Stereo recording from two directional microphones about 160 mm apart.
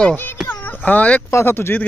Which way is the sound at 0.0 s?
10° left (ahead or behind).